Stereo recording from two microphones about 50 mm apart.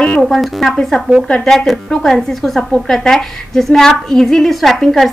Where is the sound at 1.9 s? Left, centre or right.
Centre.